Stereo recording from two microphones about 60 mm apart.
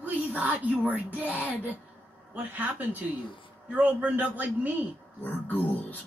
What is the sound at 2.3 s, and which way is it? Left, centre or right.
Speech, right.